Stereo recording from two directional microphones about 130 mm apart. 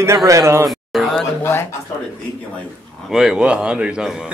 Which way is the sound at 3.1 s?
5° right (ahead or behind).